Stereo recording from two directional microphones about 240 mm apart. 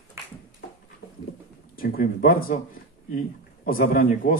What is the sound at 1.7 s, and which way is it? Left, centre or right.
A man's voice, left.